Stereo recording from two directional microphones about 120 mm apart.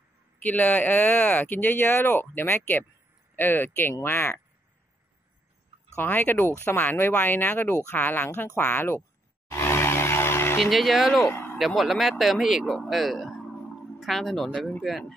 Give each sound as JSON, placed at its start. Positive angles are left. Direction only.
{"t": 0.4, "sound": "speech", "side_deg": 15}
{"t": 5.9, "sound": "speech", "side_deg": 15}
{"t": 9.5, "sound": "tire squeal", "side_deg": 20}
{"t": 10.6, "sound": "speech", "side_deg": 0}
{"t": 11.2, "sound": "a sound", "side_deg": 15}
{"t": 11.5, "sound": "speech", "side_deg": 0}